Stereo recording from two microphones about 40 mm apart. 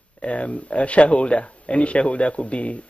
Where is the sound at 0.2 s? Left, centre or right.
Left.